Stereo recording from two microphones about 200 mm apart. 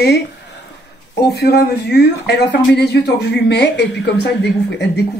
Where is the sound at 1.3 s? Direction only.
55° left (ahead or behind).